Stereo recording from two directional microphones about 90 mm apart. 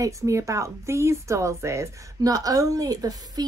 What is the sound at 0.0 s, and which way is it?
A woman's voice, 35° right (ahead or behind).